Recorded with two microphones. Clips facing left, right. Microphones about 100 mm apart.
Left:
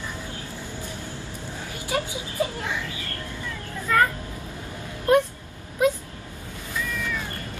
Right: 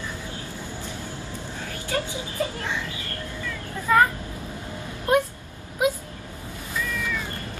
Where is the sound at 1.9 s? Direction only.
15° left (ahead or behind).